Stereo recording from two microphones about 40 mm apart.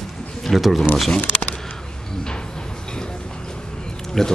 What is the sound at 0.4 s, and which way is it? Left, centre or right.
Speech, centre.